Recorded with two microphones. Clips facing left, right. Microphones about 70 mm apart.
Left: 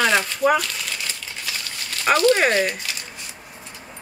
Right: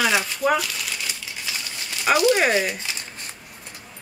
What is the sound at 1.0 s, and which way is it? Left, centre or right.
Crumpling, centre.